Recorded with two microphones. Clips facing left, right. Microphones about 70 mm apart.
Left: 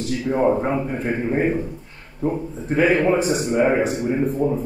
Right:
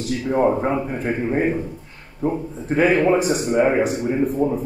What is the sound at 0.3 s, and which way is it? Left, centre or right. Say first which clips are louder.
Speech: right 1 dB; centre.